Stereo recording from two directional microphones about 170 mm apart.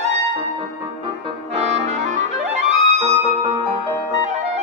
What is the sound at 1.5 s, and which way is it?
Clarinet, 40° right (ahead or behind).